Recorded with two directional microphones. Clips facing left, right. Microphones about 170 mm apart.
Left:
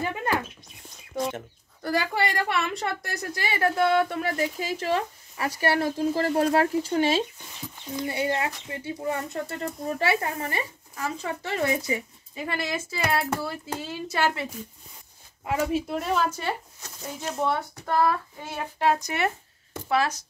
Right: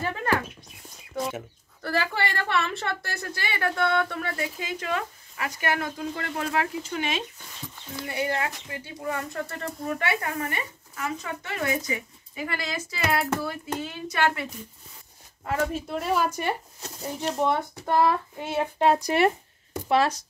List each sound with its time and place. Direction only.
0.0 s a sound: 15° left (ahead or behind)
1.1 s a sound: 5° right (ahead or behind)
1.8 s speech: 15° left (ahead or behind)
15.4 s speech: 10° left (ahead or behind)
16.0 s speech: 5° right (ahead or behind)
16.8 s speech: 30° right (ahead or behind)
17.4 s speech: 20° right (ahead or behind)